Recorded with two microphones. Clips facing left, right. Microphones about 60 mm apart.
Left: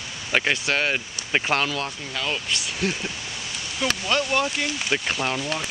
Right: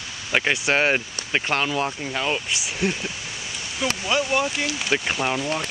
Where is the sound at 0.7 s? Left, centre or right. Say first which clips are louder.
Right 6 dB; right.